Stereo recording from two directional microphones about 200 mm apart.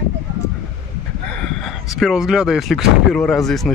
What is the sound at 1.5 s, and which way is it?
Speech, centre (ahead or behind).